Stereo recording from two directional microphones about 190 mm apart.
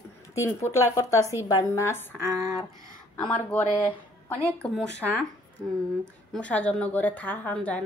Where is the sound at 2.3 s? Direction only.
20° right (ahead or behind).